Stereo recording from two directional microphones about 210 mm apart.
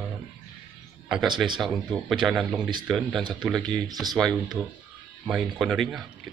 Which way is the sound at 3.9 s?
20° right (ahead or behind).